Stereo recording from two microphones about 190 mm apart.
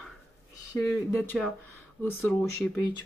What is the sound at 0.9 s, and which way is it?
Speech, 15° left (ahead or behind).